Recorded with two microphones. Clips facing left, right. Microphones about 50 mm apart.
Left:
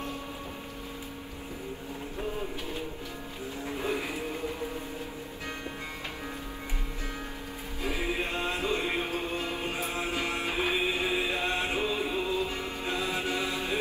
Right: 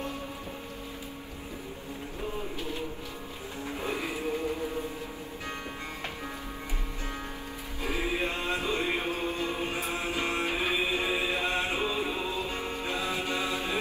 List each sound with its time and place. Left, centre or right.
3.7 s music: right
7.8 s music: right